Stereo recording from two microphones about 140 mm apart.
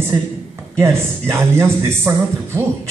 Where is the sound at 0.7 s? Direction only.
20° right (ahead or behind).